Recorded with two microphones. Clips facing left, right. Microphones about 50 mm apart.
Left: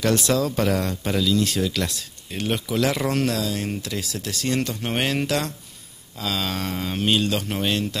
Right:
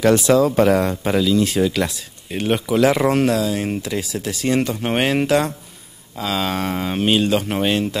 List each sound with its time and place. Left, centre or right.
0.0 s speech: centre